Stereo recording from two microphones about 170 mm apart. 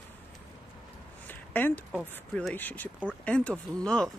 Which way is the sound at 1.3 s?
10° left (ahead or behind).